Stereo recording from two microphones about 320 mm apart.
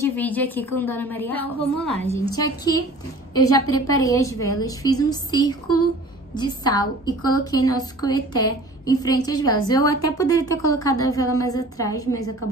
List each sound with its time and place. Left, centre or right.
0.0 s a woman's voice: centre
3.4 s a woman's voice: left
4.0 s a woman's voice: centre